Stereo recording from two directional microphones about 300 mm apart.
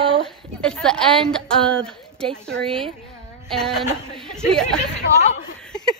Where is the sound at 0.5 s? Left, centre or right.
Centre.